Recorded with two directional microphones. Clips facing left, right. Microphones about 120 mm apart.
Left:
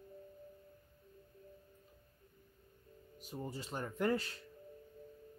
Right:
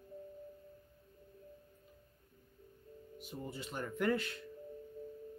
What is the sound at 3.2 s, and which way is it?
Speech, 40° left (ahead or behind).